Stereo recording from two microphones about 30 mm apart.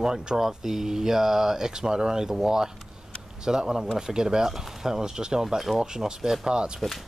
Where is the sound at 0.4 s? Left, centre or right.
Centre.